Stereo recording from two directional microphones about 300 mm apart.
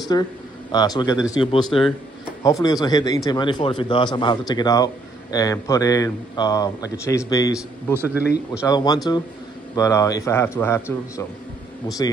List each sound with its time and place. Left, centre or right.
0.1 s a man's voice: centre
1.7 s a man's voice: centre
2.4 s a man's voice: centre
7.5 s a man's voice: centre
8.6 s a man's voice: centre